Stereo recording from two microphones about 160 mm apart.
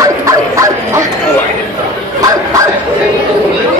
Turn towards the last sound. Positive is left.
turn(degrees=-20)  # may be behind; listen again after turning